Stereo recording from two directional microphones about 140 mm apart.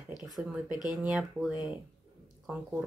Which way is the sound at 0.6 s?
30° left (ahead or behind).